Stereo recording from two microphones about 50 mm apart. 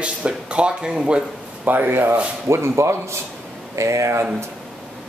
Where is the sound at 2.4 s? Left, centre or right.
Right.